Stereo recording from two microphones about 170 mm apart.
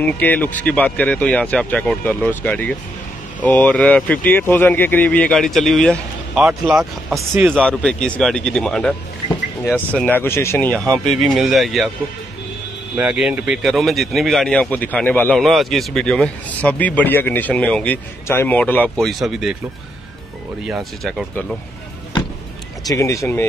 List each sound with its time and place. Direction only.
0.2 s speech: 10° left (ahead or behind)
12.9 s speech: 5° right (ahead or behind)
20.6 s speech: centre (ahead or behind)
22.8 s speech: 20° left (ahead or behind)